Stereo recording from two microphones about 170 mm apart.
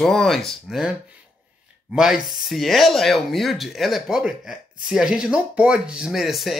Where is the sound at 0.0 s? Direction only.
Centre (ahead or behind).